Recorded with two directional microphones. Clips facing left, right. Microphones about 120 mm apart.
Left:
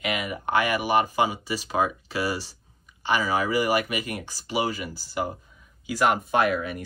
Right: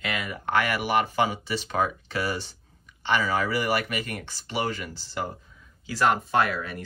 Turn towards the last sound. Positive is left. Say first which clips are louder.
# left 2 dB
turn(degrees=15)  # may be behind; listen again after turning